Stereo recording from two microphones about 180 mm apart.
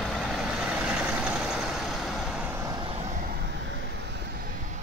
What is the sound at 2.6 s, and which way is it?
Vehicle, 20° right (ahead or behind).